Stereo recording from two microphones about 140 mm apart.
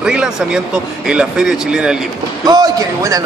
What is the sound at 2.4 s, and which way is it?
Speech, 30° right (ahead or behind).